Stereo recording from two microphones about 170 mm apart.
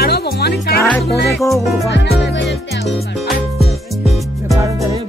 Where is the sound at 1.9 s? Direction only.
90° left.